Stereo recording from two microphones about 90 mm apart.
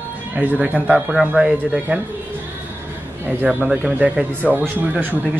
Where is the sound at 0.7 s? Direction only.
15° right (ahead or behind).